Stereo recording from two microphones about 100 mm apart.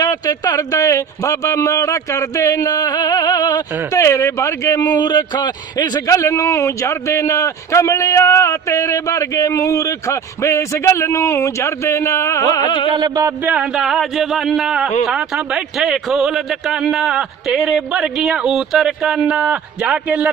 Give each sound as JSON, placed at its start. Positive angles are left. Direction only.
{"t": 0.0, "sound": "speech", "side_deg": 40}
{"t": 12.6, "sound": "music", "side_deg": 50}
{"t": 12.9, "sound": "a sound", "side_deg": -40}
{"t": 13.5, "sound": "a man's voice", "side_deg": -10}